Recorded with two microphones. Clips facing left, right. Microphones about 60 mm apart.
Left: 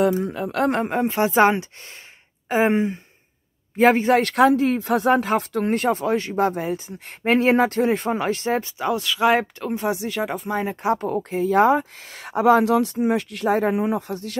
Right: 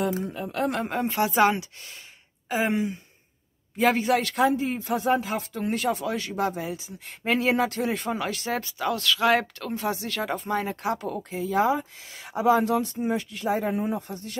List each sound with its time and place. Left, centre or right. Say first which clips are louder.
0.2 s speech: left 6 dB; left
0.8 s speech: left 4 dB; left
4.2 s speech: left 7 dB; left; by 10.3 s centre
10.3 s speech: left 2 dB; centre
10.6 s speech: left 6 dB; left
11.0 s speech: left 7 dB; left